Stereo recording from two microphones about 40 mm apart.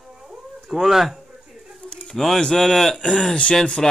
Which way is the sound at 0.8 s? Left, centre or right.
Centre.